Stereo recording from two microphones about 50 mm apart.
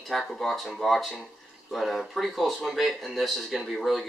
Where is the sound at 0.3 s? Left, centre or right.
Centre.